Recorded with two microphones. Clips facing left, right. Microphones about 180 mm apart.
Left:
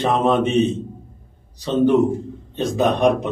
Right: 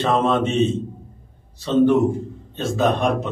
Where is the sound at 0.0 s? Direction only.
15° left (ahead or behind).